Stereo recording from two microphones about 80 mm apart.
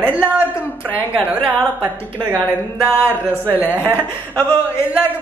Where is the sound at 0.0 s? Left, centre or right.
Centre.